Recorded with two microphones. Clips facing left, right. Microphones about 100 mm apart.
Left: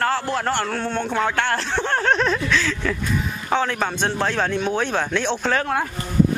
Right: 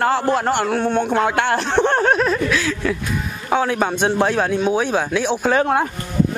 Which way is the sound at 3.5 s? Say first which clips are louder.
Right 4 dB; 10° right (ahead or behind).